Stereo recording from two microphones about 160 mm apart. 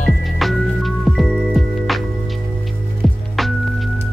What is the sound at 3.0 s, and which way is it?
Music, centre (ahead or behind).